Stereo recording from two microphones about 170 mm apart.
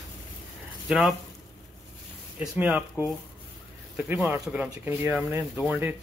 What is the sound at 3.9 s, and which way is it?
Speech, 10° right (ahead or behind).